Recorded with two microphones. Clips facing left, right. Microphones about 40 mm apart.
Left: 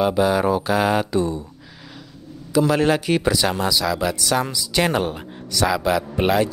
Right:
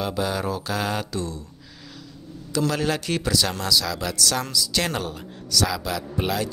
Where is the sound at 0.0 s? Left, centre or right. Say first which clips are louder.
Left 8 dB; centre.